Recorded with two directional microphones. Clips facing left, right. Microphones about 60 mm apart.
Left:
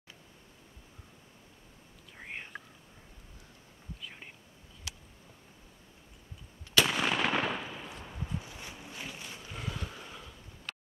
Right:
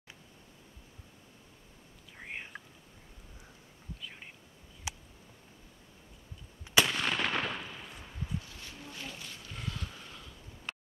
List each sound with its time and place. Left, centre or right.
2.1 s whispering: centre
4.0 s whispering: centre
4.9 s a sound: centre
6.8 s gunshot: centre
8.1 s boat: centre
9.6 s vehicle: centre